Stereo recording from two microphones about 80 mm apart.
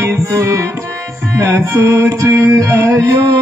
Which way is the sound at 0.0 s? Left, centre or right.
Right.